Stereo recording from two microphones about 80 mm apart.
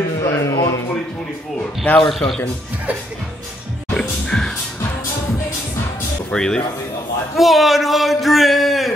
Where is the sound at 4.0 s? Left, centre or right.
Centre.